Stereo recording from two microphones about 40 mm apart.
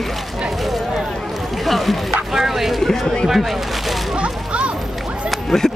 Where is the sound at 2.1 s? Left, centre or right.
Centre.